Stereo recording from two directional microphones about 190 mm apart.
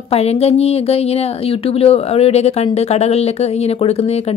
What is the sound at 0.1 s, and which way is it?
A woman's voice, 35° left (ahead or behind).